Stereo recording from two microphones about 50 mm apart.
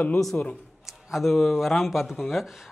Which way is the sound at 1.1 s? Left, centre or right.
Centre.